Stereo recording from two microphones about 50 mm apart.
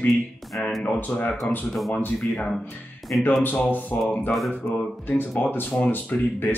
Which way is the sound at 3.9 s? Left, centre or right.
Left.